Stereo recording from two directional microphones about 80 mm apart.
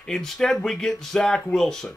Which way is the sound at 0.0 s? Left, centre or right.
Centre.